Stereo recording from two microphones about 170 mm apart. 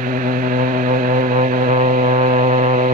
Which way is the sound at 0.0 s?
55° right (ahead or behind).